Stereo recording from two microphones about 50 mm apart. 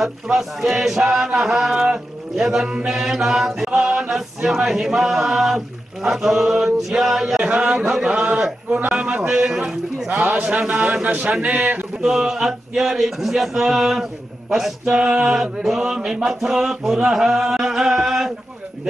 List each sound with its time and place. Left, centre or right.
0.0 s music: centre
2.9 s mantra: centre
4.5 s music: centre
8.1 s a man's voice: right
10.0 s a man's voice: right
12.0 s a man's voice: centre
14.5 s music: centre